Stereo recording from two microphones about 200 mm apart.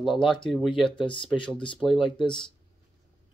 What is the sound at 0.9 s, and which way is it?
Speech, 25° left (ahead or behind).